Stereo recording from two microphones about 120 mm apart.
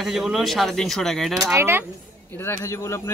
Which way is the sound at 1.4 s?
20° right (ahead or behind).